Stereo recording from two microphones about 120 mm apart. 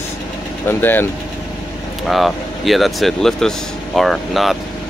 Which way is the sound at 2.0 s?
Centre (ahead or behind).